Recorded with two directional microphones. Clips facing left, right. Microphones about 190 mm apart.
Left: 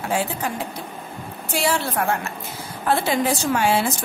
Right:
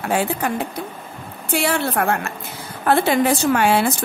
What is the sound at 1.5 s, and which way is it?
A woman's voice, 60° right (ahead or behind).